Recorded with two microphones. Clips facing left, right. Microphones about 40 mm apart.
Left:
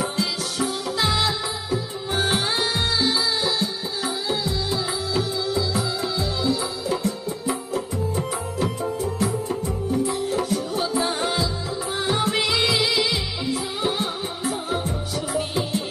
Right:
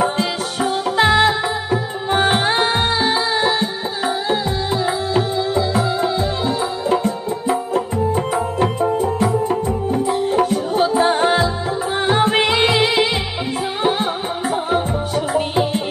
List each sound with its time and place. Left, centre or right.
0.0 s music: right